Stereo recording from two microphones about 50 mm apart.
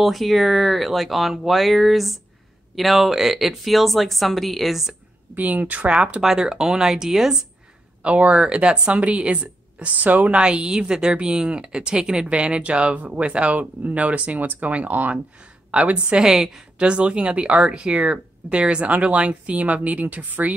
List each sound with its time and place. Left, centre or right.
0.0 s speech: centre
5.3 s speech: right
6.2 s speech: centre
8.0 s speech: right
10.4 s speech: centre
16.2 s speech: centre
16.8 s speech: right